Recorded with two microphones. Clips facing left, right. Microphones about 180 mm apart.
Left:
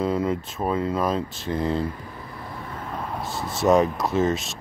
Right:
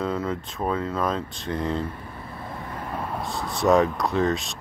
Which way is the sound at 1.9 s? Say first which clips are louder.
Left 2 dB; 25° right (ahead or behind).